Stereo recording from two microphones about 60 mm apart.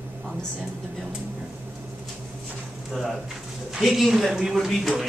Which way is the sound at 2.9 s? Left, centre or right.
Centre.